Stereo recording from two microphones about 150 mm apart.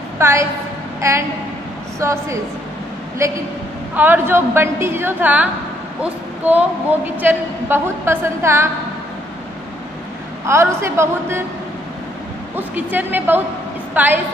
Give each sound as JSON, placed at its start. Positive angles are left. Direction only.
{"t": 0.2, "sound": "a woman's voice", "side_deg": -20}
{"t": 10.4, "sound": "a woman's voice", "side_deg": -20}
{"t": 12.5, "sound": "a woman's voice", "side_deg": -10}